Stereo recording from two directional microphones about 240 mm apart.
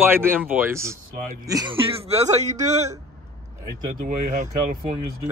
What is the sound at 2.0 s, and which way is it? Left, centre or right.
Speech, right.